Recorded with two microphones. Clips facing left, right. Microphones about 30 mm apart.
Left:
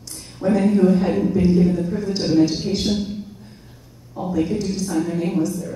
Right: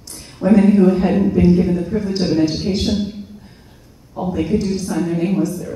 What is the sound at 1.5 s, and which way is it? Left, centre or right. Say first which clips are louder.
A man's voice: right 2 dB; centre.